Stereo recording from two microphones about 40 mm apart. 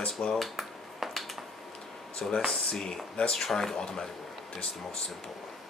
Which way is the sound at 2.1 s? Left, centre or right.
Left.